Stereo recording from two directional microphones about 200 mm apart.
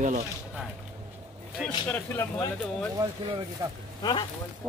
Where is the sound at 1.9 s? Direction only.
10° left (ahead or behind).